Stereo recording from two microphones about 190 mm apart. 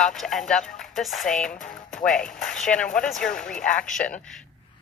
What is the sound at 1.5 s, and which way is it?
Speech, 45° left (ahead or behind).